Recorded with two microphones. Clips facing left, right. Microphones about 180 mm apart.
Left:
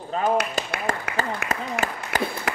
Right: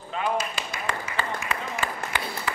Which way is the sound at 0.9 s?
45° left (ahead or behind).